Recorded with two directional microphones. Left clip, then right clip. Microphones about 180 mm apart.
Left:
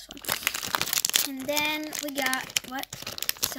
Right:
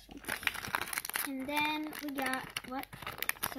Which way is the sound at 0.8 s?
65° left (ahead or behind).